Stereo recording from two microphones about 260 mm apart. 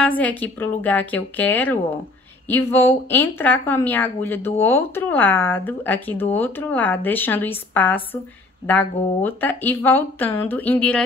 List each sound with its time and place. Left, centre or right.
0.2 s speech: centre